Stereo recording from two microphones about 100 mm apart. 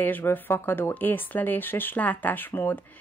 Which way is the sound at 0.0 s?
20° left (ahead or behind).